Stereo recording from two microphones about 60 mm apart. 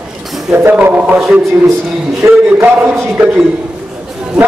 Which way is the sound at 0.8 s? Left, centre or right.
Right.